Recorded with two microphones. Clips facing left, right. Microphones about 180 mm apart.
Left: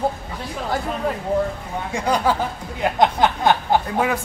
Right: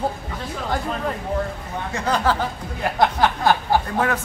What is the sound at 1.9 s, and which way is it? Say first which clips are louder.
A man's voice: left 1 dB; 15° left (ahead or behind).